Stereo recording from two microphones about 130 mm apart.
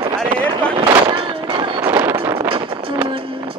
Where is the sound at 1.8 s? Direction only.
15° right (ahead or behind).